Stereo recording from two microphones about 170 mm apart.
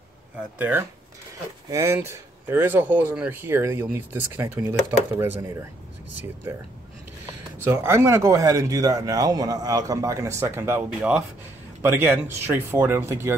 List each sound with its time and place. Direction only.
0.6 s speech: 10° right (ahead or behind)
7.5 s speech: 15° right (ahead or behind)